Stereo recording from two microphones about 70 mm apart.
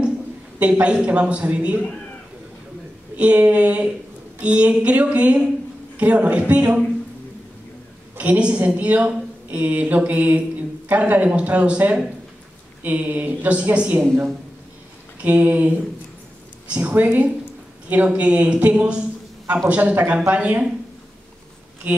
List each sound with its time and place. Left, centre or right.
0.6 s a woman's voice: centre
3.2 s a woman's voice: right
8.2 s a woman's voice: centre
15.2 s a woman's voice: right
16.7 s a woman's voice: right
21.8 s a woman's voice: right